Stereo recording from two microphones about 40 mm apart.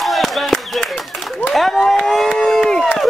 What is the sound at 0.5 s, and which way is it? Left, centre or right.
Speech, centre.